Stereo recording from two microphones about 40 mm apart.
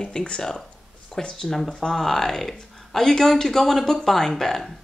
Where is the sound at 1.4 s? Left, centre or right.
Centre.